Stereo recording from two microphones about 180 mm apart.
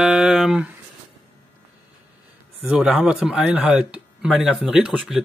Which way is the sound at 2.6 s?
5° right (ahead or behind).